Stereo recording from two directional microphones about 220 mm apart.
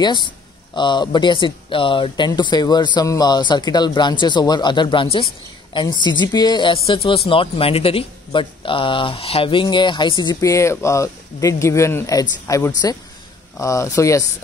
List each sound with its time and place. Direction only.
0.0 s speech: 20° left (ahead or behind)